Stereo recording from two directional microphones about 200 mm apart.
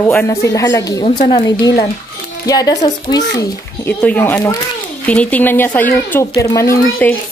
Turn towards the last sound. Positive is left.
turn(degrees=10)  # may be behind; listen again after turning